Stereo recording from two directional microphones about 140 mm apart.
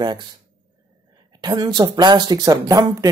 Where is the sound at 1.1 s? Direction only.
30° right (ahead or behind).